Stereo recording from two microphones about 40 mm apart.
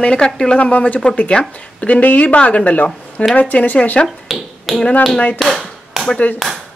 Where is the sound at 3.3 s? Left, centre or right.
Left.